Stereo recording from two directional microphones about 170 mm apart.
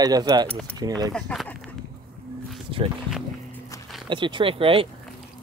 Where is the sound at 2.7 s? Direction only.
30° right (ahead or behind).